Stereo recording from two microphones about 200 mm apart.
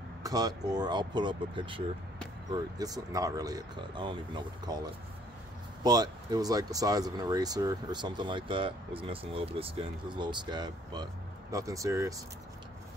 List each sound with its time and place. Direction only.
0.2 s speech: 20° right (ahead or behind)